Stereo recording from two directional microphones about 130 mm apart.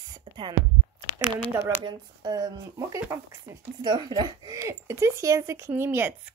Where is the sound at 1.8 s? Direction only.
35° right (ahead or behind).